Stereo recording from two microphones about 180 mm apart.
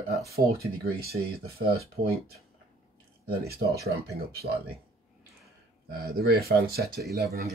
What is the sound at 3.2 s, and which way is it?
Speech, 60° right (ahead or behind).